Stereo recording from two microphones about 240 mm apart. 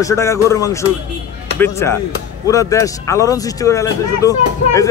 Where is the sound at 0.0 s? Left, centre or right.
Centre.